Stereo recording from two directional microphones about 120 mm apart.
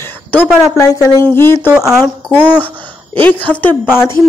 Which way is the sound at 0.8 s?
30° left (ahead or behind).